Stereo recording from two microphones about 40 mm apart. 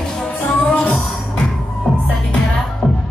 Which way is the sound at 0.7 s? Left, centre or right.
Left.